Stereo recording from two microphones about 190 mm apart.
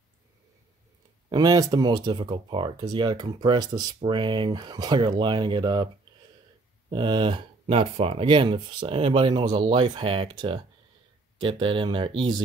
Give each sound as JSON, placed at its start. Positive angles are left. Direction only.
{"t": 1.3, "sound": "speech", "side_deg": -20}
{"t": 6.9, "sound": "speech", "side_deg": -25}